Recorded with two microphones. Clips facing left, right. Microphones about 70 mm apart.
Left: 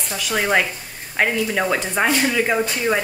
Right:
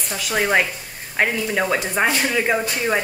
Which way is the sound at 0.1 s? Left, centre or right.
Centre.